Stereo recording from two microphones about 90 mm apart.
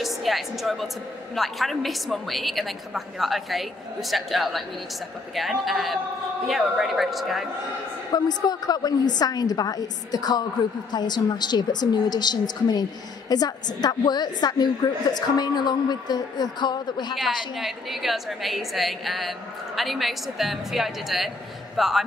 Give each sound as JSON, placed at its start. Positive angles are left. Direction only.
{"t": 0.0, "sound": "a woman's voice", "side_deg": 0}
{"t": 8.1, "sound": "a woman's voice", "side_deg": 50}
{"t": 17.6, "sound": "a woman's voice", "side_deg": 0}